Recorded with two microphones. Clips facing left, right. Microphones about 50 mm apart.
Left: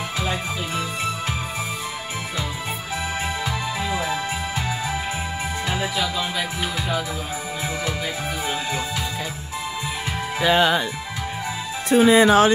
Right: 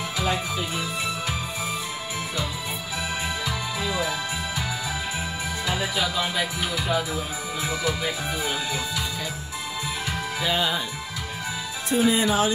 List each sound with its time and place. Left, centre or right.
0.2 s music: left
3.4 s music: left
6.3 s music: centre
10.4 s music: left
11.9 s speech: left